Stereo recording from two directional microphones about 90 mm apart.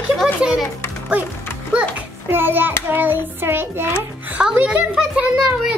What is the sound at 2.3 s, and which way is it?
Child singing, 25° right (ahead or behind).